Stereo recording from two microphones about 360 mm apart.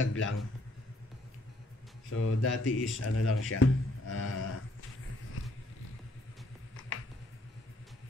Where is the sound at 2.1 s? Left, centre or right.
Left.